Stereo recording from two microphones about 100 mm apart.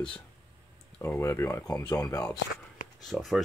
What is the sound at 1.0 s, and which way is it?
Speech, 25° left (ahead or behind).